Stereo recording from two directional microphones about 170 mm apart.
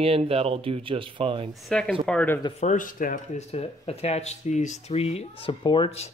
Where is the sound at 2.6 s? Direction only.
50° left (ahead or behind).